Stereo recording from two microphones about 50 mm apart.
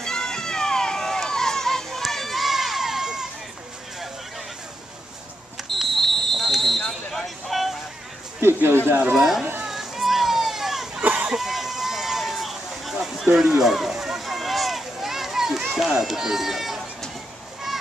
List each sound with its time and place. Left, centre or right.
0.0 s a sound: centre
5.6 s smoke detector: centre
5.9 s a sound: centre
8.5 s speech: right
9.1 s speech: centre
9.7 s children playing: centre
11.0 s a sound: right
11.3 s run: centre
13.3 s speech: right
13.6 s run: centre
16.0 s speech: centre